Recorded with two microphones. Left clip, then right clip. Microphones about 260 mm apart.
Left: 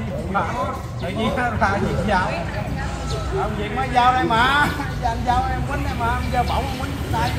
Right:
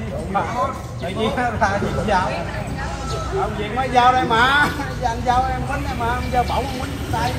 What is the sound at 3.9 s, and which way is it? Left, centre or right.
Speech, centre.